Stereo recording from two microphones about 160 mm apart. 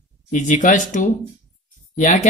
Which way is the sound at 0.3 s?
50° left (ahead or behind).